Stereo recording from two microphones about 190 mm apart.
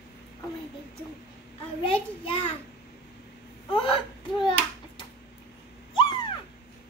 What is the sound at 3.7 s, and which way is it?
Whimper, 25° left (ahead or behind).